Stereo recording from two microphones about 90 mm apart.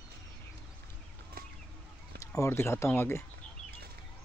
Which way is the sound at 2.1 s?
35° left (ahead or behind).